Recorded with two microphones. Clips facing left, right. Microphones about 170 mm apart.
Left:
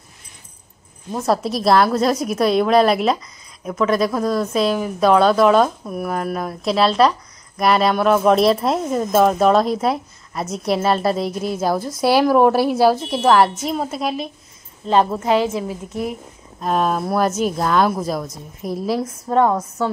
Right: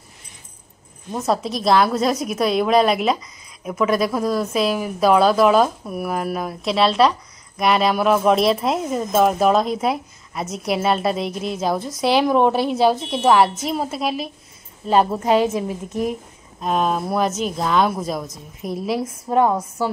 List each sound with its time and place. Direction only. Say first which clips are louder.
1.1 s a woman's voice: left 2 dB; centre (ahead or behind); by 16.2 s 20° right (ahead or behind)
16.6 s a woman's voice: left 1 dB; centre (ahead or behind)